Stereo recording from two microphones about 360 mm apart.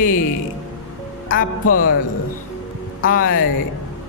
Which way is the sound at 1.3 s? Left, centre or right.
Left.